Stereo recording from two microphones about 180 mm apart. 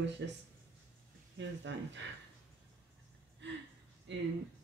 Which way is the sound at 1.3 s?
90° right.